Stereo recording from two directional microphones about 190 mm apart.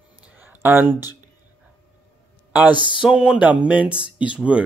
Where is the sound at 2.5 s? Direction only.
10° right (ahead or behind).